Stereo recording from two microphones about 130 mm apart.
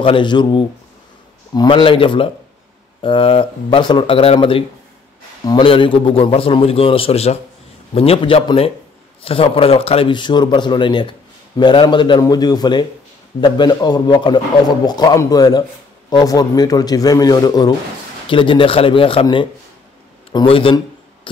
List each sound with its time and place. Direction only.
0.0 s a man's voice: 40° left (ahead or behind)
20.4 s a man's voice: 45° left (ahead or behind)